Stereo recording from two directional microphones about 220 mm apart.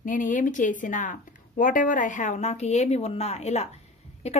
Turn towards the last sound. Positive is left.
turn(degrees=30)  # may be behind; listen again after turning